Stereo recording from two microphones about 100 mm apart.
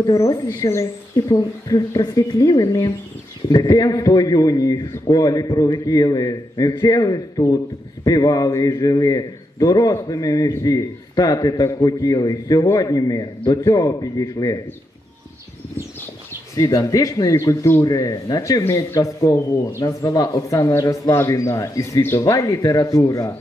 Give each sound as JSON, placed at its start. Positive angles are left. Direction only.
{"t": 0.0, "sound": "a man's voice", "side_deg": 40}
{"t": 0.7, "sound": "a man's voice", "side_deg": 30}
{"t": 16.5, "sound": "a man's voice", "side_deg": 35}